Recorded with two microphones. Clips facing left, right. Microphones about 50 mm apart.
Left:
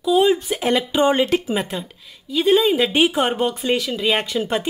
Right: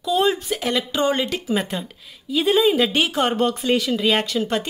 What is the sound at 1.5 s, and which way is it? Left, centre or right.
Speech, centre.